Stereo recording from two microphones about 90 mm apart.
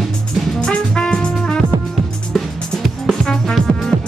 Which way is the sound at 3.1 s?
5° left (ahead or behind).